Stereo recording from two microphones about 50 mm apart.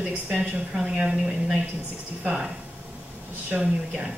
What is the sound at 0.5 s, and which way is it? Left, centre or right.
Speech, centre.